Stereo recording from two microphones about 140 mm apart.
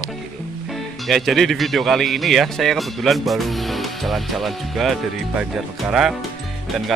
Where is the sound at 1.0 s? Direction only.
Centre (ahead or behind).